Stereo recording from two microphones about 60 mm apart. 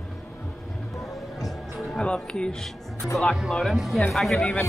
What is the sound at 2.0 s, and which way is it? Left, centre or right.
Speech, centre.